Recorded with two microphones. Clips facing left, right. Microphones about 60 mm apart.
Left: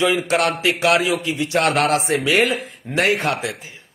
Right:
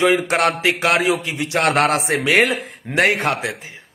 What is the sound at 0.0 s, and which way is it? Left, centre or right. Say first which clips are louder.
A man's voice: right 2 dB; right.